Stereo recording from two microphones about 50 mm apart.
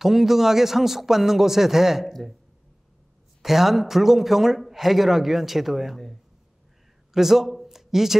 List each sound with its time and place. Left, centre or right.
0.0 s speech: centre
2.0 s a man's voice: centre
3.4 s a man's voice: centre
7.2 s speech: centre